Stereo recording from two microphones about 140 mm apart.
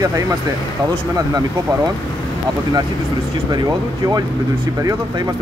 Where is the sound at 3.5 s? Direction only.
25° right (ahead or behind).